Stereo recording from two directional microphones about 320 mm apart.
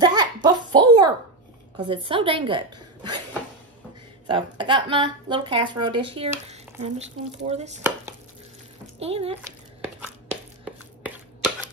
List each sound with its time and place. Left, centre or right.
0.0 s a sound: centre
1.8 s a woman's voice: centre
4.3 s speech: centre
9.0 s speech: centre
9.9 s chopping: centre